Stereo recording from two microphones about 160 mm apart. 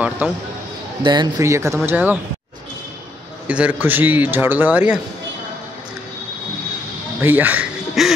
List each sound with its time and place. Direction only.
1.0 s speech: 25° right (ahead or behind)
3.4 s a man's voice: 10° right (ahead or behind)
7.2 s a sound: 10° right (ahead or behind)